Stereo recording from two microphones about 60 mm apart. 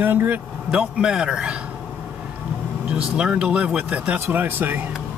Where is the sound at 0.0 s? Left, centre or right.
Right.